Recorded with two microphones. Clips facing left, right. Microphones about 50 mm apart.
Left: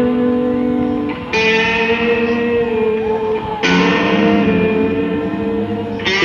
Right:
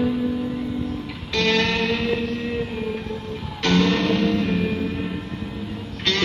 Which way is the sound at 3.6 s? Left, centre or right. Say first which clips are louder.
Left 5 dB; left.